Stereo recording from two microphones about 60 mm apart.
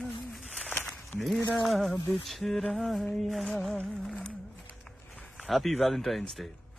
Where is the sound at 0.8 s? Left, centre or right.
Left.